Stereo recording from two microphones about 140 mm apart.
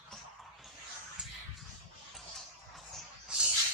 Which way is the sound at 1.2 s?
5° right (ahead or behind).